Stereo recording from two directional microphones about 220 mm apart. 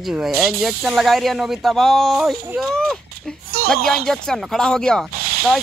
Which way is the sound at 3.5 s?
45° right (ahead or behind).